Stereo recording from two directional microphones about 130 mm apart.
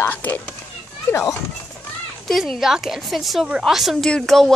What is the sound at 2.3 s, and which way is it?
A woman's voice, centre (ahead or behind).